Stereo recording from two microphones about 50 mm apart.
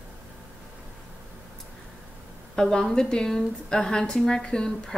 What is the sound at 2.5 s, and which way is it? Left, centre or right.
Speech, centre.